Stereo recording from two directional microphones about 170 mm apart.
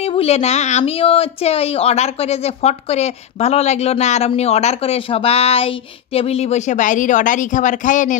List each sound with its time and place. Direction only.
0.0 s a woman's voice: 35° left (ahead or behind)